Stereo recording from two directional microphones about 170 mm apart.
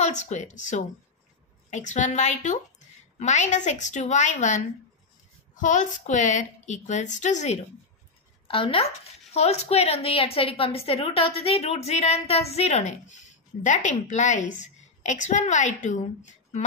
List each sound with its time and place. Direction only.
0.0 s a woman's voice: 45° left (ahead or behind)
8.5 s a woman's voice: 30° left (ahead or behind)